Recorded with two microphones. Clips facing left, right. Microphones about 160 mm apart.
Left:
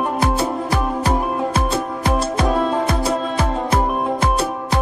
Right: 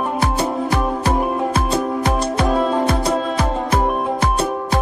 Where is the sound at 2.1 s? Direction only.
Centre (ahead or behind).